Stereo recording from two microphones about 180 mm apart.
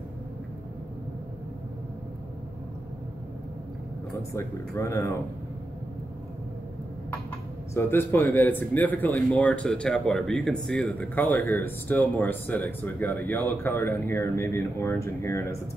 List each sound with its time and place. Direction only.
4.3 s speech: 15° left (ahead or behind)
7.7 s speech: 15° left (ahead or behind)